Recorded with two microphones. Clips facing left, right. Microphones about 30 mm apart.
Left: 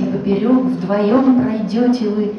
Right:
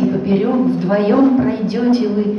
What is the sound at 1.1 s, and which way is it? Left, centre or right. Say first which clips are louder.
Speech: even; centre.